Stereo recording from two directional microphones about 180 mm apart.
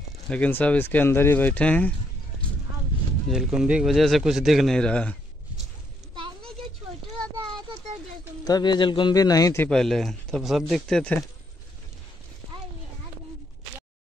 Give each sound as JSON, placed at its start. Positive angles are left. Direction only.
{"t": 0.3, "sound": "speech", "side_deg": 10}
{"t": 3.3, "sound": "a man's voice", "side_deg": -5}
{"t": 6.1, "sound": "a sound", "side_deg": -25}
{"t": 8.5, "sound": "a man's voice", "side_deg": 25}
{"t": 9.7, "sound": "a man's voice", "side_deg": 0}